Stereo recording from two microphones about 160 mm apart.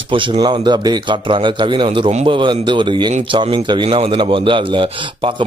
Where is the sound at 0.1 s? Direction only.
30° right (ahead or behind).